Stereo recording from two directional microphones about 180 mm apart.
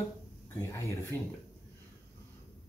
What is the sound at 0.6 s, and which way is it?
Speech, 15° left (ahead or behind).